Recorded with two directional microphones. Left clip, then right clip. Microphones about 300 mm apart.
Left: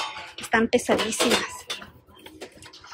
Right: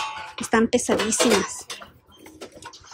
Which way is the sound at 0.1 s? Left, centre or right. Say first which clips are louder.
Right 1 dB; centre.